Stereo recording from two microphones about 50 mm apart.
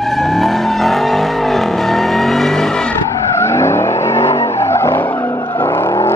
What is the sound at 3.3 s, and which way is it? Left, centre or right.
Vehicle, left.